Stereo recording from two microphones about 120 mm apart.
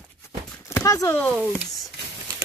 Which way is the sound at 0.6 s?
25° left (ahead or behind).